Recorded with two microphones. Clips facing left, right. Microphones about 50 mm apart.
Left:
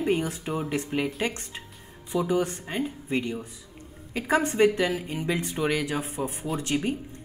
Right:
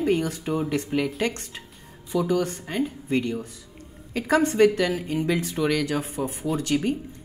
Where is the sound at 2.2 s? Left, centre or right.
Centre.